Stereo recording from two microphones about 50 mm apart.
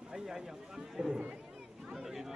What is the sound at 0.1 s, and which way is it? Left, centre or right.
Speech, centre.